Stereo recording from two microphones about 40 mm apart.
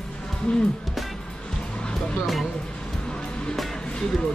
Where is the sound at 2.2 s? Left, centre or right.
Centre.